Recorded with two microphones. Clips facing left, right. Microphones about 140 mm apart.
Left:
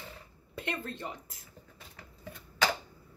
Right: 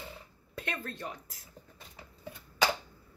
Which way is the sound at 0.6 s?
20° left (ahead or behind).